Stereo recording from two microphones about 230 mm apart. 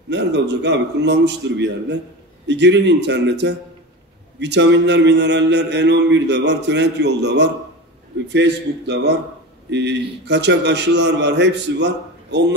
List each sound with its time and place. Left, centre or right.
0.1 s a man's voice: right